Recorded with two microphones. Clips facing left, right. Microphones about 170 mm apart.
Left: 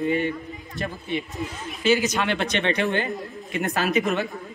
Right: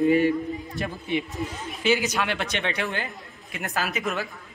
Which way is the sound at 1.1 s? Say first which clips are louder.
Right 2 dB; 15° right (ahead or behind).